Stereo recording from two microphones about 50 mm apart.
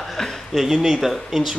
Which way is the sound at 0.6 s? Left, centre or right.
Centre.